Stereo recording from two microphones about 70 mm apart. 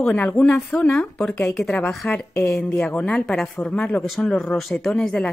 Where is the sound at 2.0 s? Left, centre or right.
Left.